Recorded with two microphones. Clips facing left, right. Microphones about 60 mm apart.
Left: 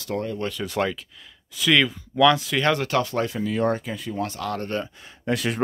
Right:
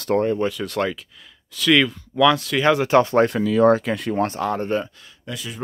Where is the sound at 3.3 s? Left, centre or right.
Right.